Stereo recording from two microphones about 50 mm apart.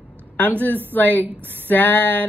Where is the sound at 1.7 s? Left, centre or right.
Left.